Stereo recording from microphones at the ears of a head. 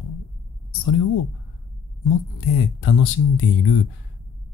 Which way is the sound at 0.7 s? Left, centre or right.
Left.